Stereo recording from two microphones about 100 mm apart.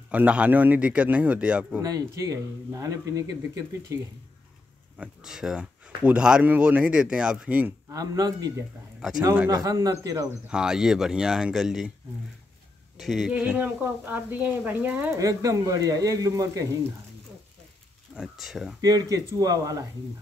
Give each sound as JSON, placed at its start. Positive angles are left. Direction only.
{"t": 0.1, "sound": "speech", "side_deg": -15}
{"t": 1.8, "sound": "speech", "side_deg": -40}
{"t": 4.9, "sound": "speech", "side_deg": -5}
{"t": 7.9, "sound": "speech", "side_deg": -40}
{"t": 10.5, "sound": "speech", "side_deg": -5}
{"t": 12.9, "sound": "speech", "side_deg": 0}
{"t": 13.3, "sound": "speech", "side_deg": -15}
{"t": 15.1, "sound": "speech", "side_deg": -35}
{"t": 18.1, "sound": "speech", "side_deg": -5}
{"t": 18.8, "sound": "speech", "side_deg": -40}